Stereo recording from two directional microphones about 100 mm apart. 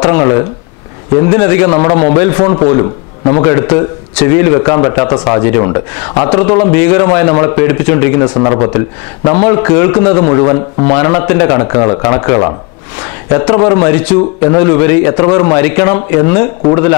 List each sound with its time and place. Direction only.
0.0 s a sound: 20° left (ahead or behind)
1.2 s speech: 20° left (ahead or behind)
5.0 s speech: 15° left (ahead or behind)